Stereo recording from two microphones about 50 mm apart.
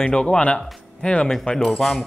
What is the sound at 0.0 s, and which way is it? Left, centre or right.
Speech, centre.